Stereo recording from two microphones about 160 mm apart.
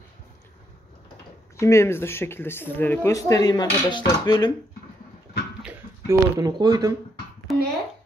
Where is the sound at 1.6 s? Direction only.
15° left (ahead or behind).